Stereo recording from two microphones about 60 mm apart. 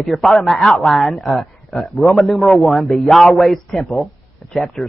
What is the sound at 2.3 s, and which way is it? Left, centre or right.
A man's voice, centre.